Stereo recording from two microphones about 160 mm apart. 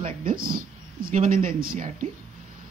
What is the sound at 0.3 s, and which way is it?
Speech, 65° right (ahead or behind).